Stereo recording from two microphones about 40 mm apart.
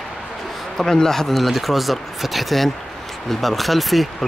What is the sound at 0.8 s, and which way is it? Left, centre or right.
Speech, centre.